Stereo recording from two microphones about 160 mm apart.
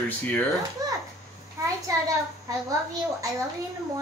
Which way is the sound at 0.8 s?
25° right (ahead or behind).